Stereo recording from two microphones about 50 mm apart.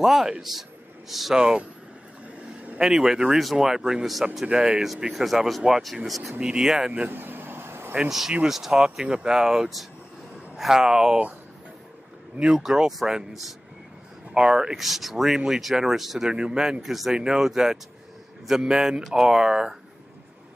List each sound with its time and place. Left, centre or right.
0.0 s a man's voice: centre
2.2 s a sound: right
2.8 s speech: centre
5.1 s speech: centre
6.4 s speech: centre
7.1 s vehicle: right
8.1 s speech: centre
12.4 s speech: centre
13.3 s speech: centre
14.3 s speech: centre
14.8 s speech: centre
16.3 s speech: centre
16.8 s speech: centre